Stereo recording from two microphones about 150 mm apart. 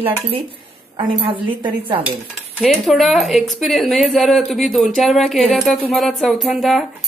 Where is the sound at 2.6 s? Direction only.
Centre (ahead or behind).